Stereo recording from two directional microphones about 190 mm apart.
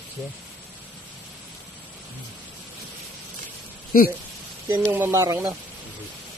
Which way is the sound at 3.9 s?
50° left (ahead or behind).